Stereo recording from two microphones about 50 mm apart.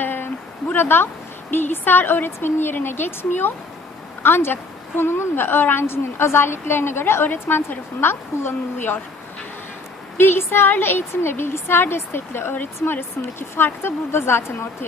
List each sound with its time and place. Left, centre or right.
0.0 s a sound: left
0.7 s a woman's voice: left
10.1 s a woman's voice: left